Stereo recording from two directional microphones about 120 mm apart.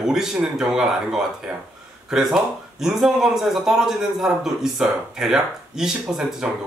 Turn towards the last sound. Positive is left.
turn(degrees=-5)  # may be behind; listen again after turning